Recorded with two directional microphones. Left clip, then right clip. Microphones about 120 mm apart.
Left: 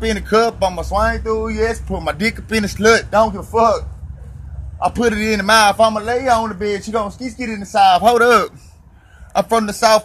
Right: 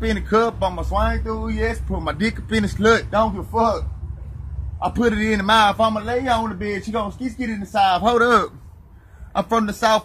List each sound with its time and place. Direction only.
0.0 s speech: 5° left (ahead or behind)
1.3 s speech: 25° left (ahead or behind)
1.7 s a man's voice: 10° left (ahead or behind)
2.1 s speech: 20° left (ahead or behind)
2.6 s speech: 5° left (ahead or behind)
4.7 s a man's voice: 10° left (ahead or behind)
5.9 s speech: 20° left (ahead or behind)
7.2 s speech: 25° left (ahead or behind)
7.8 s a man's voice: 15° left (ahead or behind)